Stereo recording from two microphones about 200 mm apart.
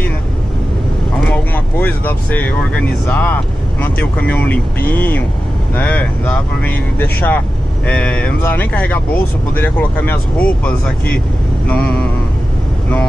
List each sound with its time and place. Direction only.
1.2 s speech: 10° left (ahead or behind)